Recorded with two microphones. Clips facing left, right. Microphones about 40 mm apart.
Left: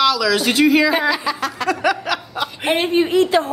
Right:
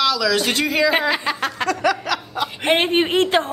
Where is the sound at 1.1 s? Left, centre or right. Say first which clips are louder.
Left 1 dB; right.